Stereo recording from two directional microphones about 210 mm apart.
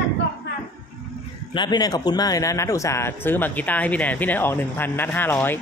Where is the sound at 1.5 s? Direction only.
20° left (ahead or behind).